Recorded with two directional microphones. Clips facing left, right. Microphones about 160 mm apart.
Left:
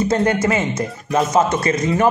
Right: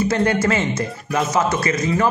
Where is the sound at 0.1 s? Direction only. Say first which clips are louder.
Left 1 dB; 20° left (ahead or behind).